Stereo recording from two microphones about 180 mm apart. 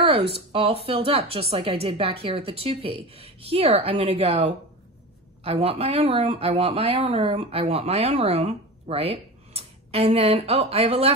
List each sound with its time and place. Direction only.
0.0 s speech: 30° right (ahead or behind)